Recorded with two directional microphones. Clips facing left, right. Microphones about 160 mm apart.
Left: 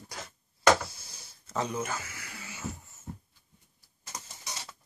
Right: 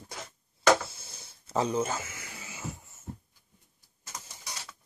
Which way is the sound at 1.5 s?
30° right (ahead or behind).